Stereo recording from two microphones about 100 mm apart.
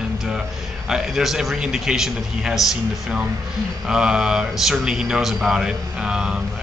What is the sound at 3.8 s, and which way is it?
A man's voice, 5° right (ahead or behind).